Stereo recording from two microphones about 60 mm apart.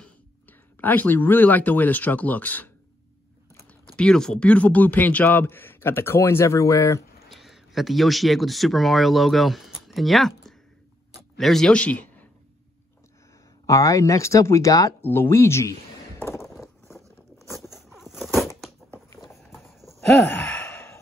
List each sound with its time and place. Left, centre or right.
0.0 s speech: left
3.8 s speech: centre
4.5 s speech: left
7.2 s speech: centre
11.7 s a man's voice: left
13.7 s speech: left
15.0 s speech: left
16.3 s a sound: left
17.4 s a sound: centre
20.4 s sigh: centre